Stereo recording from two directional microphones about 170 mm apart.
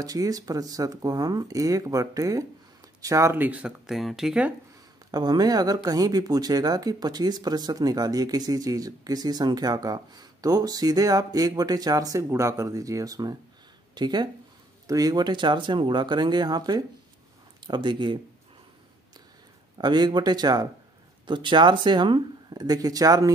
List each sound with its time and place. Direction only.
0.0 s speech: 20° right (ahead or behind); by 4.6 s 5° right (ahead or behind)
5.1 s speech: 25° right (ahead or behind)
19.8 s speech: 25° right (ahead or behind)